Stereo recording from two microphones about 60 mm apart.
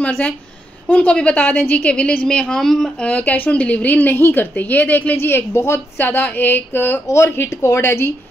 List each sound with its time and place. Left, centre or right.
0.0 s a woman's voice: left
1.9 s a woman's voice: centre
3.0 s a woman's voice: left
7.2 s speech: left